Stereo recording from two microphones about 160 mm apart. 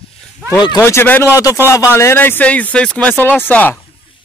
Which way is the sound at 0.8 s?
15° left (ahead or behind).